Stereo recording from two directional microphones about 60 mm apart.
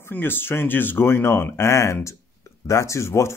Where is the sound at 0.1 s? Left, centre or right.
Left.